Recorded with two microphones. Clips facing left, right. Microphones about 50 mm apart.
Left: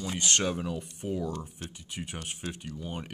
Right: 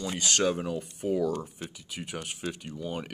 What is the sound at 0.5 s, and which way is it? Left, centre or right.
Speech, centre.